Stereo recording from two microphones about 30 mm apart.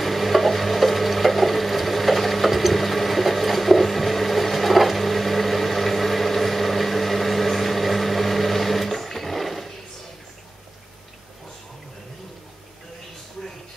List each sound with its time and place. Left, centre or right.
0.0 s wood: centre